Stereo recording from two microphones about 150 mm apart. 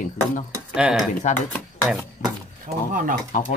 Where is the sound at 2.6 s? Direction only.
65° right (ahead or behind).